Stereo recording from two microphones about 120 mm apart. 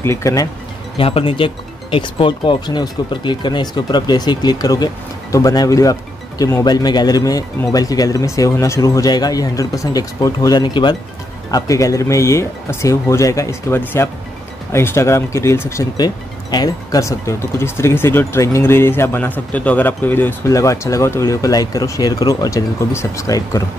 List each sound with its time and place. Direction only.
0.0 s speech: 25° left (ahead or behind)
0.9 s speech: 50° left (ahead or behind)
11.5 s speech: 30° left (ahead or behind)